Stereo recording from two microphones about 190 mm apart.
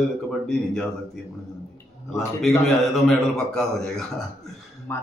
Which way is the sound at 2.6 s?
5° left (ahead or behind).